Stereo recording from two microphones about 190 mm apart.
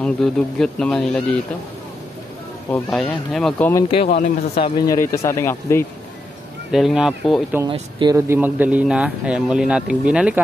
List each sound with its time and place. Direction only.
0.0 s speech: 5° left (ahead or behind)
2.9 s speech: centre (ahead or behind)
3.9 s speech: 30° left (ahead or behind); by 5.9 s 15° left (ahead or behind)
6.7 s speech: centre (ahead or behind)
7.7 s speech: 20° right (ahead or behind); by 10.4 s 5° right (ahead or behind)